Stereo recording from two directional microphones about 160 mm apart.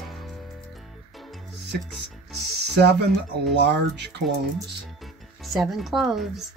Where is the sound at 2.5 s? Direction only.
90° right.